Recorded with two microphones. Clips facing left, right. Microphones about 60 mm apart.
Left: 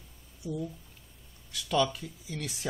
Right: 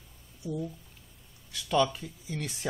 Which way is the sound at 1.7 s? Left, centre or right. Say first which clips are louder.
Right 1 dB; right.